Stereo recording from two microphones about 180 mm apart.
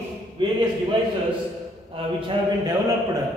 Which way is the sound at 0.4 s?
25° right (ahead or behind).